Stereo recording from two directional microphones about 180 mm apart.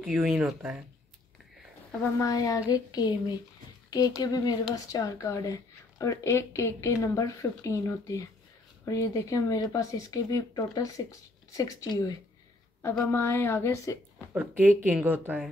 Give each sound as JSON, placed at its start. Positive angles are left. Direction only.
{"t": 0.0, "sound": "speech", "side_deg": -5}
{"t": 2.1, "sound": "speech", "side_deg": 20}
{"t": 14.1, "sound": "speech", "side_deg": -10}